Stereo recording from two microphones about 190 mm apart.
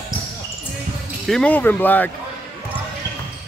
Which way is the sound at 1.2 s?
5° left (ahead or behind).